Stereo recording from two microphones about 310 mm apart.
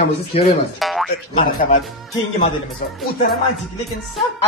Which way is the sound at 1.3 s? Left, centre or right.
Left.